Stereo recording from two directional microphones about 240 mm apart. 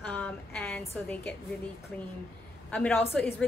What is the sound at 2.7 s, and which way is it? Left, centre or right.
Speech, centre.